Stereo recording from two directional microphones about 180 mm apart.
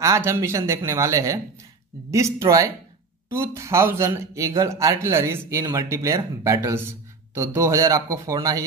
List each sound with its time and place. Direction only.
0.0 s speech: 15° right (ahead or behind)